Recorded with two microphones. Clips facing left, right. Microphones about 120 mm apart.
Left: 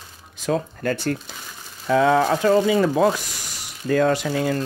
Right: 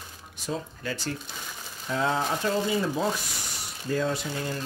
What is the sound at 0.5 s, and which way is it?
Speech, 55° left (ahead or behind).